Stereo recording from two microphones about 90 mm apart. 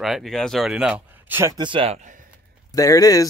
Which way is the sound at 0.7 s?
10° right (ahead or behind).